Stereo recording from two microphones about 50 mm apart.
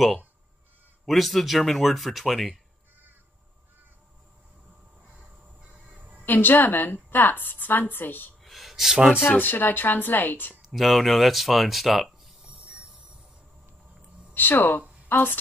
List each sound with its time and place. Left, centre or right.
1.0 s speech: centre
5.6 s train: right
6.2 s a woman's voice: left
8.5 s a sound: centre
8.9 s speech: centre
9.3 s a woman's voice: left
10.7 s speech: centre
14.3 s a woman's voice: left